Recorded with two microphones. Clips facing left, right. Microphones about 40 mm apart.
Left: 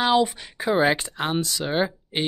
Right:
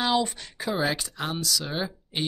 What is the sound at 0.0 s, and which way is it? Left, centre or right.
Speech, left.